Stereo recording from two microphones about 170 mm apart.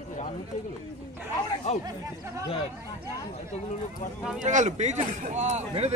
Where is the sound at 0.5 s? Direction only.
45° left (ahead or behind).